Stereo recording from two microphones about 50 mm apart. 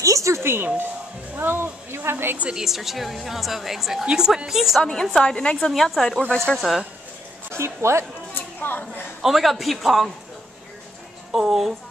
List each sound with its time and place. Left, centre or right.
0.0 s music: right
0.4 s speech: right
2.5 s a woman's voice: centre
4.0 s a woman's voice: centre
4.5 s a woman's voice: centre
5.2 s a woman's voice: left
5.6 s a woman's voice: centre
7.5 s speech: right
8.5 s a woman's voice: left
9.2 s a woman's voice: centre
11.3 s a woman's voice: centre